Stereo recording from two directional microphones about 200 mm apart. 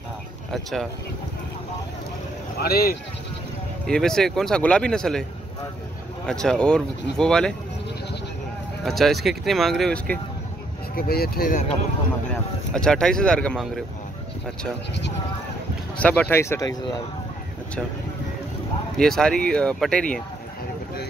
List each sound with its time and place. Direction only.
0.5 s speech: centre (ahead or behind)
2.6 s speech: 50° left (ahead or behind)
3.8 s speech: 5° left (ahead or behind)
6.2 s speech: 5° left (ahead or behind)
8.8 s speech: centre (ahead or behind)
11.0 s speech: 50° left (ahead or behind)
12.3 s speech: 5° left (ahead or behind)
16.0 s speech: 5° left (ahead or behind)
18.9 s speech: centre (ahead or behind)